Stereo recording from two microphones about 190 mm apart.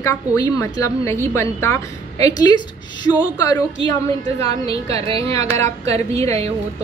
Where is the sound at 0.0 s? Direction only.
15° left (ahead or behind).